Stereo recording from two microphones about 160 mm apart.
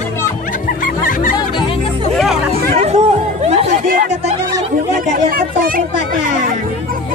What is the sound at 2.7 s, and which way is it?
Chatter, 45° right (ahead or behind).